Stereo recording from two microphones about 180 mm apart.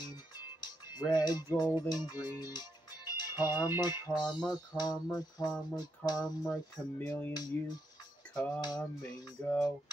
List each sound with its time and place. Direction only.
0.6 s music: 25° left (ahead or behind)
3.1 s speech: 20° left (ahead or behind)
4.1 s music: 25° left (ahead or behind)
6.8 s speech: 10° left (ahead or behind)
7.3 s music: 20° left (ahead or behind)
9.4 s speech: 5° left (ahead or behind)